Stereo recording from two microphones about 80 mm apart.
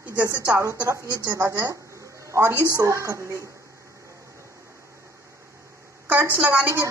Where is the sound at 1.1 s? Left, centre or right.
Right.